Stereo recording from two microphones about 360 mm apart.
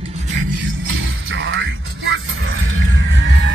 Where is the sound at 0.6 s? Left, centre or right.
Right.